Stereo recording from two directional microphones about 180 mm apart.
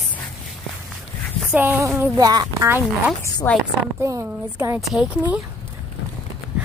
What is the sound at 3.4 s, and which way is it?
Speech, 10° left (ahead or behind).